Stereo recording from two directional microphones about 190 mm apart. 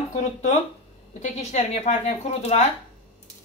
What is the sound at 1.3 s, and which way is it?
Speech, 35° left (ahead or behind).